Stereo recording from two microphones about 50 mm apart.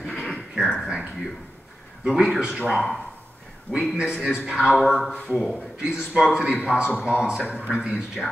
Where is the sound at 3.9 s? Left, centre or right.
Centre.